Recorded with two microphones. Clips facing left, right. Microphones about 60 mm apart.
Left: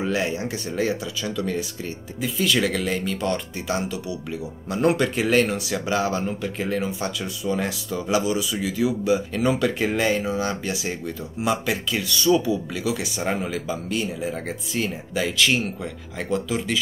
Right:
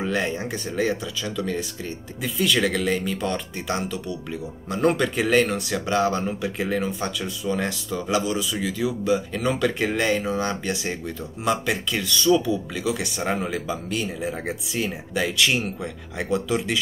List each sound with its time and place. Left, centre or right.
0.0 s speech: centre
6.4 s speech: centre